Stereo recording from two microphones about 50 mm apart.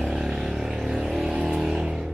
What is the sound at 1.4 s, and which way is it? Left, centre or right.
Vehicle, centre.